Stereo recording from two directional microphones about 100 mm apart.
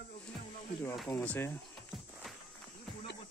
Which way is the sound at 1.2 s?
20° left (ahead or behind).